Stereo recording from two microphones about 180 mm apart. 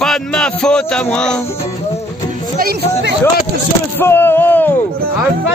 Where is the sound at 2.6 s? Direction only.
55° right (ahead or behind).